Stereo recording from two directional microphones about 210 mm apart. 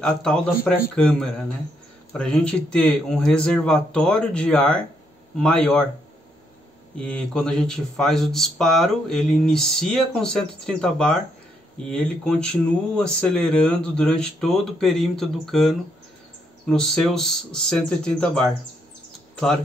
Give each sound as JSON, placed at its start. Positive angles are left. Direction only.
{"t": 0.0, "sound": "speech", "side_deg": 5}
{"t": 7.0, "sound": "speech", "side_deg": 5}